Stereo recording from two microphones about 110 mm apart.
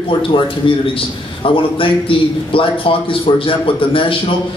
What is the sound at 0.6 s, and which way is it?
A man's voice, 55° left (ahead or behind).